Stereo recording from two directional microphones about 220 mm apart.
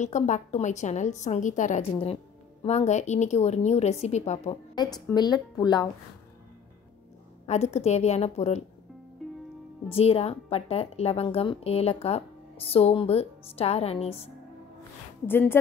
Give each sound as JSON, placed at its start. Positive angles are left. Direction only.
{"t": 0.0, "sound": "a woman's voice", "side_deg": 30}
{"t": 7.4, "sound": "speech", "side_deg": 30}
{"t": 9.2, "sound": "music", "side_deg": 0}
{"t": 9.8, "sound": "speech", "side_deg": 25}
{"t": 15.2, "sound": "speech", "side_deg": 10}